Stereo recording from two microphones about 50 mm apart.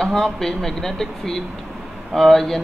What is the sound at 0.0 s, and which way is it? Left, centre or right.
A man's voice, centre.